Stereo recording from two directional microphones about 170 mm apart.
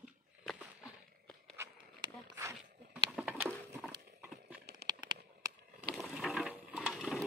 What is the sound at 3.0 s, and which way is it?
Patter, 5° right (ahead or behind).